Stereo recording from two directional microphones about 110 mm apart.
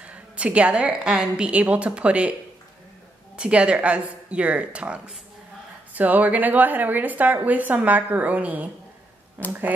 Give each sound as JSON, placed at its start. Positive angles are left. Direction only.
{"t": 0.0, "sound": "a woman's voice", "side_deg": -10}
{"t": 3.3, "sound": "a woman's voice", "side_deg": -10}